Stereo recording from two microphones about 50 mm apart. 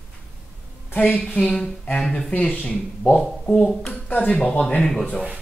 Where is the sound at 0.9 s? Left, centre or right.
Left.